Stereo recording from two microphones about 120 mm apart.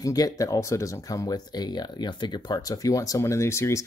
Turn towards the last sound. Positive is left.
turn(degrees=20)  # may be behind; listen again after turning